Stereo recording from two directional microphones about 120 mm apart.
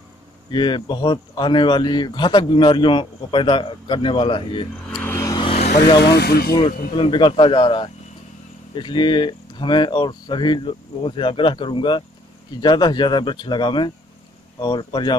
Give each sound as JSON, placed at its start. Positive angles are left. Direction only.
{"t": 0.5, "sound": "speech", "side_deg": 40}
{"t": 5.0, "sound": "vehicle", "side_deg": 20}
{"t": 5.5, "sound": "vehicle", "side_deg": 65}
{"t": 6.5, "sound": "speech", "side_deg": 40}